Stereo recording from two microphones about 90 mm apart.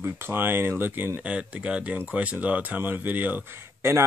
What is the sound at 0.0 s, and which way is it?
Speech, 25° right (ahead or behind).